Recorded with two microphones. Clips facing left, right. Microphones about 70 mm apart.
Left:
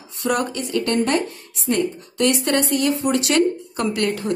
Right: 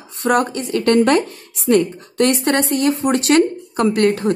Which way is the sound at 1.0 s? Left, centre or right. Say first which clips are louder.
Right 6 dB; right.